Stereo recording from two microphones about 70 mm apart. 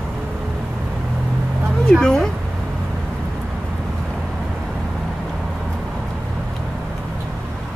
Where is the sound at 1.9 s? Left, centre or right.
Centre.